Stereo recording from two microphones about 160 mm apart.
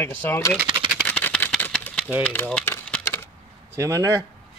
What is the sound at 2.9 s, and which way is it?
Coin, 10° left (ahead or behind).